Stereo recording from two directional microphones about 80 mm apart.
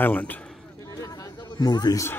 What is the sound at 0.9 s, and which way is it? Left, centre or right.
Chatter, left.